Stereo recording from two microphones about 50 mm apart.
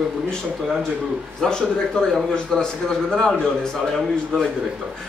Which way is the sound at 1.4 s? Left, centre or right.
Centre.